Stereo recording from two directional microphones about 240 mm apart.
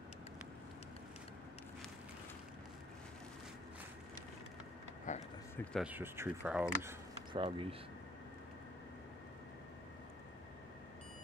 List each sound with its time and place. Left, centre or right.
5.1 s a sound: left
5.6 s speech: centre
7.3 s speech: right